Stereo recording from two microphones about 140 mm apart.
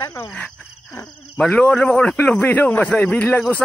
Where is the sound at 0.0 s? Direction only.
20° left (ahead or behind).